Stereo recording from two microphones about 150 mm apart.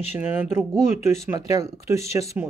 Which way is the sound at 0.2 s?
15° right (ahead or behind).